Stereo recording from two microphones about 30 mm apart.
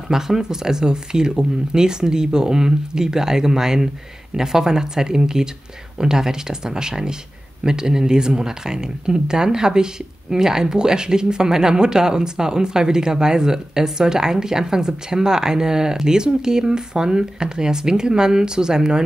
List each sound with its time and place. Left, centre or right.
0.1 s speech: centre